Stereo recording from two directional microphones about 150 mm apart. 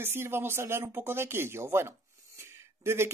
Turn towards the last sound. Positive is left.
turn(degrees=-15)  # may be behind; listen again after turning